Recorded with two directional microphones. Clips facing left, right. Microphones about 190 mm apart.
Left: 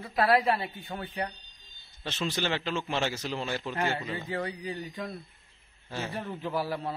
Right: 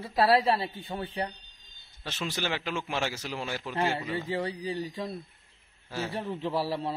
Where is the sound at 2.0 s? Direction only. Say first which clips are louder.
Left 2 dB; 10° right (ahead or behind).